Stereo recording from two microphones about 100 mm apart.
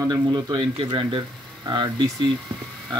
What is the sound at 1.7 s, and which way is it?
Speech, 50° right (ahead or behind).